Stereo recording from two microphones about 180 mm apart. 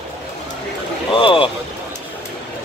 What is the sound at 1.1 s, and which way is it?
Vehicle, 30° left (ahead or behind).